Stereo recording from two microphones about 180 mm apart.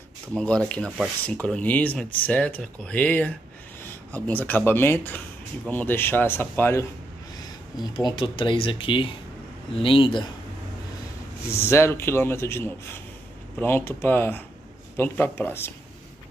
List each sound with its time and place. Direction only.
0.4 s speech: 5° left (ahead or behind)
7.9 s speech: 30° left (ahead or behind)
11.5 s speech: 15° left (ahead or behind)